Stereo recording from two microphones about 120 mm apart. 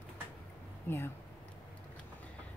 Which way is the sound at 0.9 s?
20° left (ahead or behind).